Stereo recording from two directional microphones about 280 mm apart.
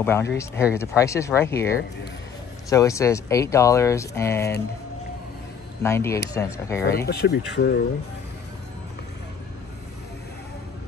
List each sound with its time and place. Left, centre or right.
0.0 s speech: centre
2.7 s speech: centre
5.8 s speech: centre
7.1 s speech: left